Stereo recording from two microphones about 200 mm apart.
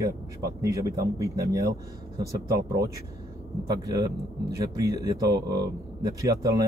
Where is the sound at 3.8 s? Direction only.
15° right (ahead or behind).